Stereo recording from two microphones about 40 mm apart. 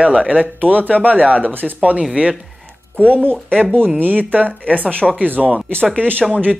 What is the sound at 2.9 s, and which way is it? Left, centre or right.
Speech, left.